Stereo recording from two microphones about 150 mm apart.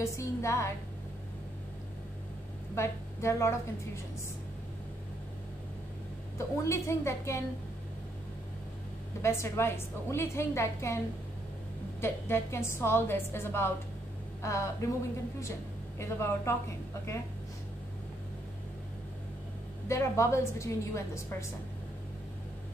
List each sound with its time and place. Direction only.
0.0 s a woman's voice: 20° left (ahead or behind)
2.7 s a woman's voice: 15° left (ahead or behind)
6.3 s a woman's voice: 20° left (ahead or behind)
9.2 s a woman's voice: 15° left (ahead or behind)
12.0 s a woman's voice: 15° left (ahead or behind)
16.0 s a woman's voice: 15° left (ahead or behind)
19.9 s a woman's voice: 20° left (ahead or behind)